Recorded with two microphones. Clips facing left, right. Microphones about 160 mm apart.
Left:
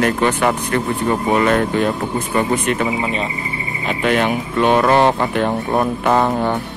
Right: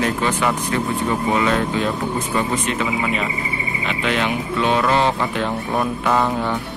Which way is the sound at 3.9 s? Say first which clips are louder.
Left 5 dB; 50° left (ahead or behind).